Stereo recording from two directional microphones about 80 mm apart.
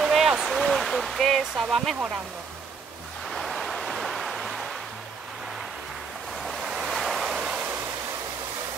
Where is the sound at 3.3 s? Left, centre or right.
Centre.